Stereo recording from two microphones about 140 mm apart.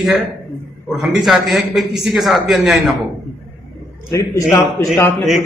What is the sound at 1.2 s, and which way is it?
A man's voice, centre (ahead or behind).